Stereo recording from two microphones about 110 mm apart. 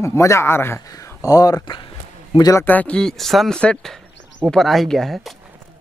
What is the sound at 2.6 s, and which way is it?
Speech, 15° left (ahead or behind).